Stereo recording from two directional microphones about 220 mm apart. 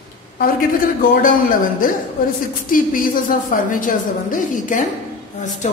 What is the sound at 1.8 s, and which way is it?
A woman's voice, 35° left (ahead or behind).